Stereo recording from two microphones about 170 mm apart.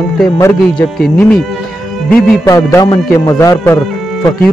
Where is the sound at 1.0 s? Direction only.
5° left (ahead or behind).